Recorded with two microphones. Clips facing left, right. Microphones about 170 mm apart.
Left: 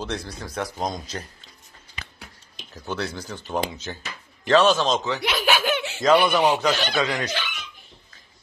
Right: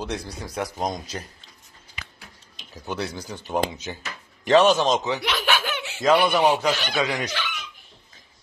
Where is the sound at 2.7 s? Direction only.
10° right (ahead or behind).